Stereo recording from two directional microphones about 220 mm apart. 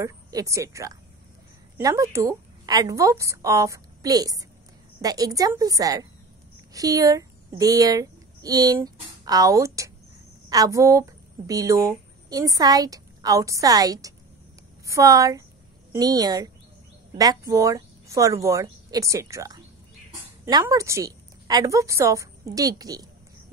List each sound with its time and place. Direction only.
0.0 s a woman's voice: 15° right (ahead or behind)